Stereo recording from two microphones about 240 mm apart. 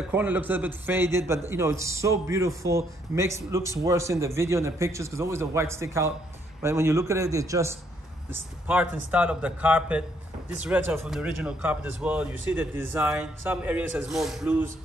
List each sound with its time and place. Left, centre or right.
0.1 s a man's voice: centre